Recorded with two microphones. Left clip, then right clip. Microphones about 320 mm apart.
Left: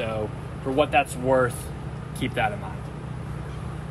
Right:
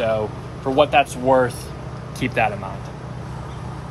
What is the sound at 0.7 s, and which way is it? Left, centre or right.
Speech, centre.